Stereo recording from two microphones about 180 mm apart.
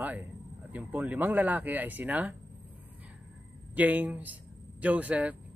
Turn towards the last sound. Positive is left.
turn(degrees=-10)  # may be behind; listen again after turning